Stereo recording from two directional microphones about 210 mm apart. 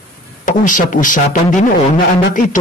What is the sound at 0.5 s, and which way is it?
Speech, 40° left (ahead or behind).